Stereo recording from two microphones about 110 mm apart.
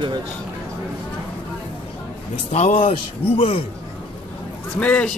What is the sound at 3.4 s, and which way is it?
Speech, 55° left (ahead or behind).